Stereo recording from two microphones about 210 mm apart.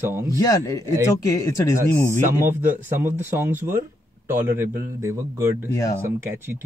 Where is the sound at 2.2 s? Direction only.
35° right (ahead or behind).